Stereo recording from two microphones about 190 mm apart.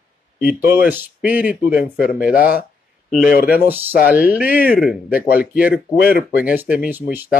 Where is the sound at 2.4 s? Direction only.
50° left (ahead or behind).